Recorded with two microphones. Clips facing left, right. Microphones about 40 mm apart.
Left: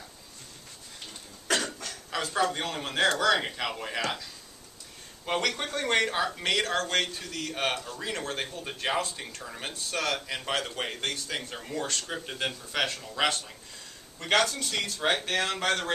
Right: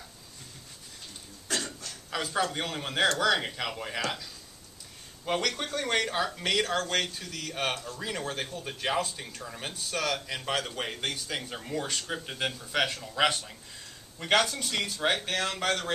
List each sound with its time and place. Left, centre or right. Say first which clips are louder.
1.5 s a sound: left 5 dB; left
2.0 s a sound: left 1 dB; centre
2.5 s speech: even; centre
5.2 s speech: left 1 dB; centre
7.7 s a man's voice: left 2 dB; left
8.0 s speech: left 1 dB; centre
15.2 s speech: left 2 dB; centre